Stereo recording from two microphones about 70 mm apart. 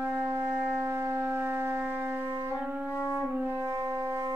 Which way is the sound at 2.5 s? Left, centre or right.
Centre.